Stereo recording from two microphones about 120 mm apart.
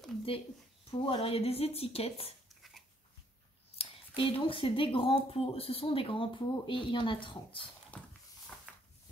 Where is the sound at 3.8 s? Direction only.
50° left (ahead or behind).